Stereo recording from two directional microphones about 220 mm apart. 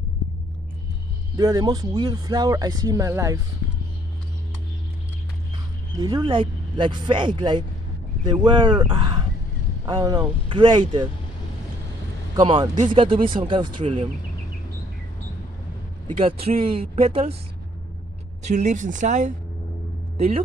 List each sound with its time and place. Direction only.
1.3 s speech: 15° right (ahead or behind)
5.9 s speech: 20° right (ahead or behind)
12.4 s speech: 20° right (ahead or behind)
16.2 s speech: 25° right (ahead or behind)
18.5 s speech: 35° right (ahead or behind)